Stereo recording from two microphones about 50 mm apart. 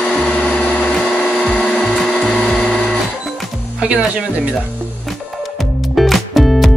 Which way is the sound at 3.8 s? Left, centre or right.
Right.